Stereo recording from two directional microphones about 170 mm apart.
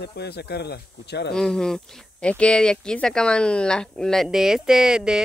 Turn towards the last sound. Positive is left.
turn(degrees=-5)  # may be behind; listen again after turning